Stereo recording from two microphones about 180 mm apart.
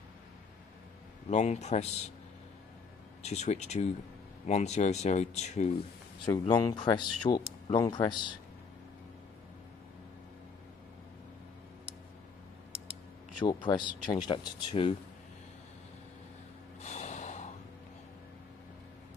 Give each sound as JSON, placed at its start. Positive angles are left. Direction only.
{"t": 1.3, "sound": "speech", "side_deg": 40}
{"t": 3.2, "sound": "speech", "side_deg": 40}
{"t": 6.5, "sound": "speech", "side_deg": 20}
{"t": 13.4, "sound": "speech", "side_deg": 25}
{"t": 16.8, "sound": "snort", "side_deg": 40}